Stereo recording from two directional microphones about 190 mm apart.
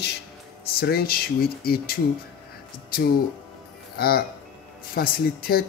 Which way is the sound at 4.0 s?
55° left (ahead or behind).